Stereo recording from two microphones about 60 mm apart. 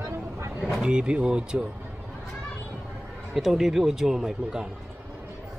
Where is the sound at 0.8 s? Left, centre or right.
Centre.